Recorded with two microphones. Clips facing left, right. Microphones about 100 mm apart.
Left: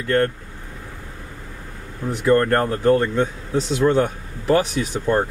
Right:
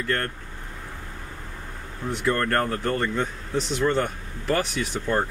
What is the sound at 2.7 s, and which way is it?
Speech, 5° left (ahead or behind).